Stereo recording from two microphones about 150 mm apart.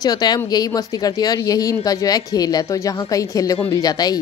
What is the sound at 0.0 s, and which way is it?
A woman's voice, 25° left (ahead or behind).